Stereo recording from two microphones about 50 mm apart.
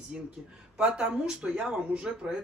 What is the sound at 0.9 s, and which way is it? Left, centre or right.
Speech, centre.